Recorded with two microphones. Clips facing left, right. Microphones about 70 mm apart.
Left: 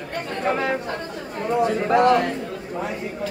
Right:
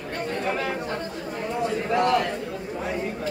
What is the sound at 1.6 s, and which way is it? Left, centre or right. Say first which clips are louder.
Speech: left 5 dB; left.